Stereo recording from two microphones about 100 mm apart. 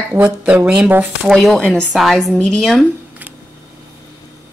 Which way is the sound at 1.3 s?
Centre (ahead or behind).